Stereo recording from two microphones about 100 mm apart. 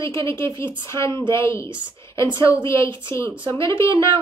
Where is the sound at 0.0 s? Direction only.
30° left (ahead or behind).